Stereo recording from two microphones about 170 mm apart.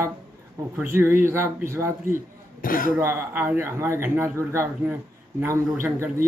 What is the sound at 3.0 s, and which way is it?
Speech, 15° right (ahead or behind).